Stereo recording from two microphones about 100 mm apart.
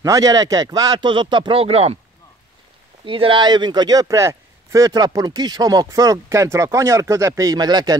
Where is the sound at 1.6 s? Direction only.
90° right.